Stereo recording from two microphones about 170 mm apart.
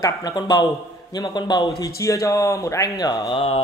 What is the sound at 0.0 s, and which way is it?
Speech, 25° left (ahead or behind).